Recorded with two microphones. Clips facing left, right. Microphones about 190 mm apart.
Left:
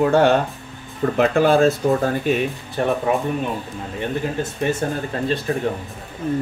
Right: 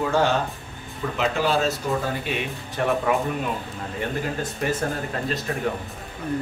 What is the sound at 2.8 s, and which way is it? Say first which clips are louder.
Speech: left 3 dB; 35° left (ahead or behind).